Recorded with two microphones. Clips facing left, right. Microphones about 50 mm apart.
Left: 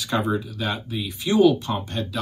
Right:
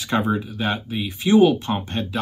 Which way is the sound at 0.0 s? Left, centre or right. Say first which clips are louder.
Right 2 dB; right.